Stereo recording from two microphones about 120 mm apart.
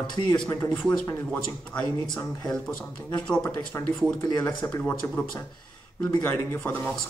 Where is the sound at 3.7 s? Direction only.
20° left (ahead or behind).